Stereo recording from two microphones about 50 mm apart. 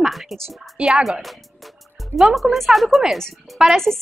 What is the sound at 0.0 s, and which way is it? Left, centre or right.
Music, centre.